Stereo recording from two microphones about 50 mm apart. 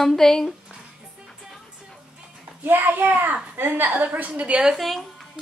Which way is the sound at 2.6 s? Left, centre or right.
Right.